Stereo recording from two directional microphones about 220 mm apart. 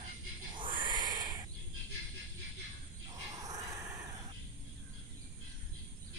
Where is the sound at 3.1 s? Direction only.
15° right (ahead or behind).